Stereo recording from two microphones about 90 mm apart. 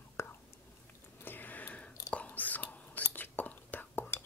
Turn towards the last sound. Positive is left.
turn(degrees=20)  # may be behind; listen again after turning